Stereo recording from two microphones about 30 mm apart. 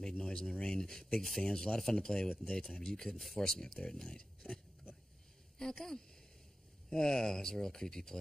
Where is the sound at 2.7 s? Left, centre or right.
Centre.